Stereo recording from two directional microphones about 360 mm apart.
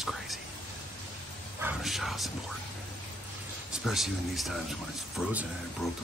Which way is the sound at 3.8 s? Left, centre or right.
Centre.